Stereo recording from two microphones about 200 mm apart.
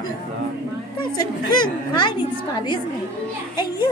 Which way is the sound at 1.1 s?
20° left (ahead or behind).